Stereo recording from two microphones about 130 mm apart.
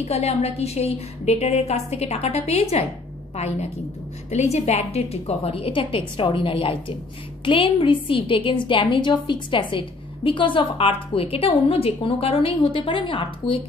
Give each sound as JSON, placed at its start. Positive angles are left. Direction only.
{"t": 0.0, "sound": "a woman's voice", "side_deg": 55}